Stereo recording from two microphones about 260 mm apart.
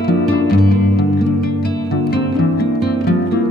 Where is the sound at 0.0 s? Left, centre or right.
Left.